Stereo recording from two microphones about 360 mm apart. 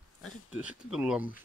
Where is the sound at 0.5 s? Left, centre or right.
Centre.